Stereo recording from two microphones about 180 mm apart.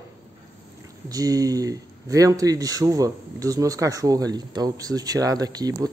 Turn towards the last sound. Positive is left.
turn(degrees=-20)  # may be behind; listen again after turning